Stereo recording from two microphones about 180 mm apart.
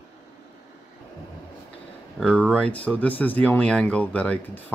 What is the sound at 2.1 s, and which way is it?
Speech, 5° left (ahead or behind).